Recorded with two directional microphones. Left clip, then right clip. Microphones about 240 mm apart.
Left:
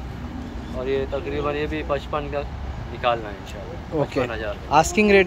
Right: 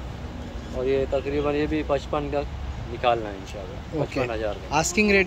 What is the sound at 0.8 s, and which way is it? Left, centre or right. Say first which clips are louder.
Speech: right 1 dB; right.